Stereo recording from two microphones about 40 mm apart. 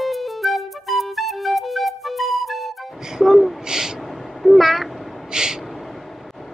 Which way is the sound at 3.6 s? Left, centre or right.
Centre.